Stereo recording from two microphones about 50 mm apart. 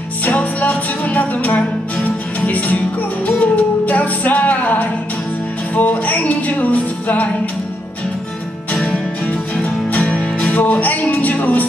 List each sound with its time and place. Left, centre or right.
0.2 s music: left
10.4 s music: left